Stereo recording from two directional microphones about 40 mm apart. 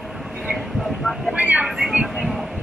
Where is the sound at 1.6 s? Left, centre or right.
Centre.